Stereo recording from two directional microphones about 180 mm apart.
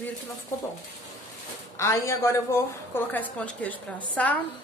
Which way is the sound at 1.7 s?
15° left (ahead or behind).